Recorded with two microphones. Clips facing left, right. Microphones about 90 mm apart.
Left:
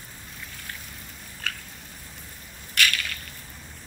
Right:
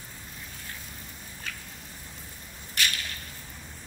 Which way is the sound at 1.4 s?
90° left.